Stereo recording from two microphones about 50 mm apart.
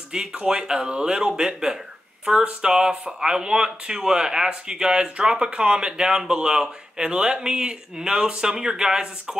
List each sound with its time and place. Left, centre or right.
0.1 s speech: centre